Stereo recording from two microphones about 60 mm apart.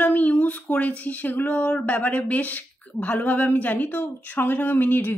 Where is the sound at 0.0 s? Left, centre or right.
Left.